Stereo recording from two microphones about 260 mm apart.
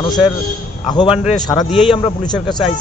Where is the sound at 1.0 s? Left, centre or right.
Centre.